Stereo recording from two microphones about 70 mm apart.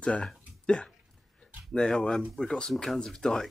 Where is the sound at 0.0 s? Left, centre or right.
Centre.